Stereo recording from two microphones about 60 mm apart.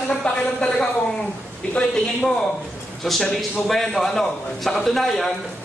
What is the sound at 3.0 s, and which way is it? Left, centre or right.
A man's voice, centre.